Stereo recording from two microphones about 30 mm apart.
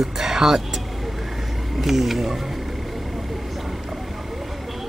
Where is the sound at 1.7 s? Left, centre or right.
Centre.